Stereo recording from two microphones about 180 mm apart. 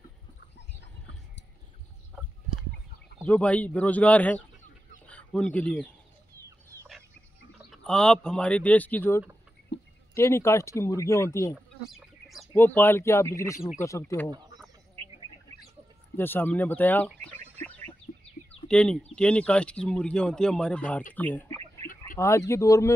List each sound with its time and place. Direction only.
2.1 s a sound: centre (ahead or behind)
3.3 s speech: 5° left (ahead or behind)
5.0 s chicken: 5° left (ahead or behind)
7.7 s speech: 5° left (ahead or behind)
9.7 s a sound: 75° left (ahead or behind)
10.1 s speech: 15° left (ahead or behind)
11.5 s chicken: centre (ahead or behind)
12.5 s speech: 10° left (ahead or behind)
16.2 s a sound: 10° left (ahead or behind)
18.7 s speech: 5° left (ahead or behind)